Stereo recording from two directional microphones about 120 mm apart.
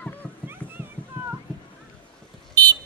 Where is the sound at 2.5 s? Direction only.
35° right (ahead or behind).